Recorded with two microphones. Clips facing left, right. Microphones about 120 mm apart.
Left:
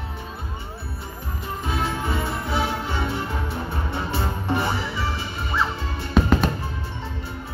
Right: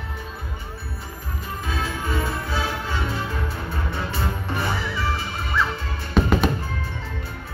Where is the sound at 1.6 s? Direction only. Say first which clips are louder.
Left 3 dB; 25° left (ahead or behind).